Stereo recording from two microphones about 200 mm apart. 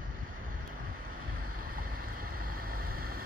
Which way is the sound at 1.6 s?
45° right (ahead or behind).